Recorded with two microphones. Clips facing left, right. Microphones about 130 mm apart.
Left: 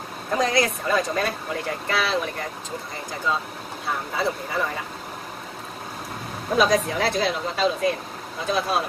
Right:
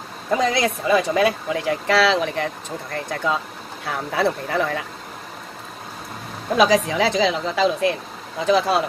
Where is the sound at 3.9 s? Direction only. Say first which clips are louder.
Right 4 dB; 70° right (ahead or behind).